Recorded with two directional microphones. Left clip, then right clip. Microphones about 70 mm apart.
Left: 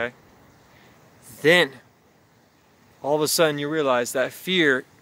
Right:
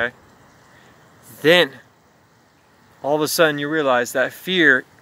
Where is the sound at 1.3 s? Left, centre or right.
Centre.